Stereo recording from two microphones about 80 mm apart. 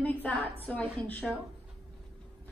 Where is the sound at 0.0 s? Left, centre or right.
Centre.